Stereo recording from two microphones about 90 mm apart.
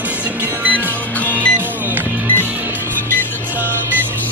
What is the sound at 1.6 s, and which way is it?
Music, 20° right (ahead or behind).